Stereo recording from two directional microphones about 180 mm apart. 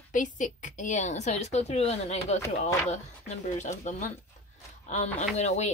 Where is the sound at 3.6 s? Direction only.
40° left (ahead or behind).